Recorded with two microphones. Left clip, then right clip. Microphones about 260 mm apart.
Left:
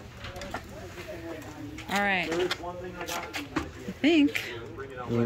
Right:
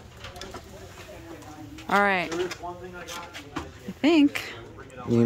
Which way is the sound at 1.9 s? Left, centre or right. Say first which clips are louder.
Right 5 dB; centre.